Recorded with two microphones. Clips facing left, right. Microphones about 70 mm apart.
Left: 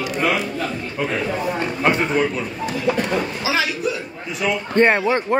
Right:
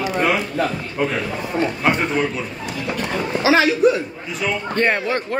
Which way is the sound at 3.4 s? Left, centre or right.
Right.